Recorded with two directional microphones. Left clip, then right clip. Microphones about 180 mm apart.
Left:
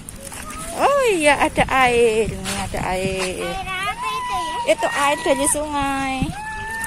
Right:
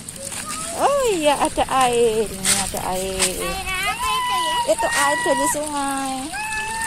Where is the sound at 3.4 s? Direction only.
55° left (ahead or behind).